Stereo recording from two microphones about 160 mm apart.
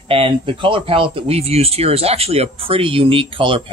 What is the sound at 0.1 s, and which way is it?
Speech, 35° right (ahead or behind).